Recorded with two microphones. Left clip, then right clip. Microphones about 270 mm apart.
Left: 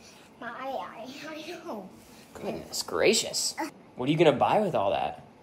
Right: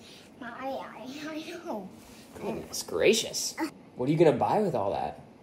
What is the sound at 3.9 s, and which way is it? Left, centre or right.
Speech, left.